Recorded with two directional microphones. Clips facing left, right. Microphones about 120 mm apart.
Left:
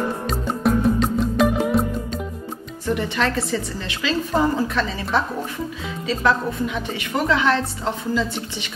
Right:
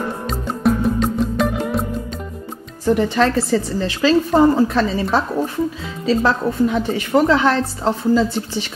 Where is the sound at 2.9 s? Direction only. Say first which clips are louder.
Right 6 dB; 35° right (ahead or behind).